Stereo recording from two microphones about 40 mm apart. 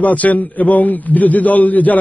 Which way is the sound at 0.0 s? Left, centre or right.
Left.